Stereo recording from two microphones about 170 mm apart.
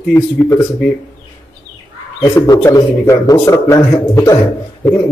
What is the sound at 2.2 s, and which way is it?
Speech, 20° left (ahead or behind).